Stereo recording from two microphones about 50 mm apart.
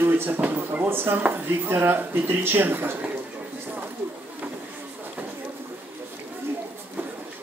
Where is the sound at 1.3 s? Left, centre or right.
Right.